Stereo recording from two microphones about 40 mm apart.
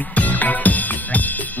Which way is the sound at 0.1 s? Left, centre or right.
Left.